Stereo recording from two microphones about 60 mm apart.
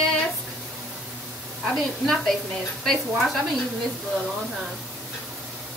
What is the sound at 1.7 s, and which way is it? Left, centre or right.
A woman's voice, centre.